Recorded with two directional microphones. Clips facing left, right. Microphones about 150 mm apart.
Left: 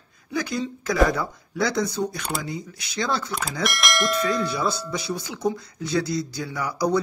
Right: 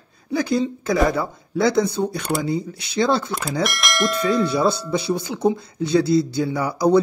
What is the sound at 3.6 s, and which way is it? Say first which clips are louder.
Speech: right 2 dB; centre (ahead or behind).